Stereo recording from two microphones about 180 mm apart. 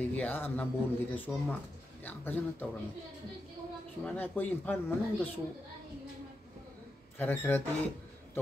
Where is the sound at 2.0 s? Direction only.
10° left (ahead or behind).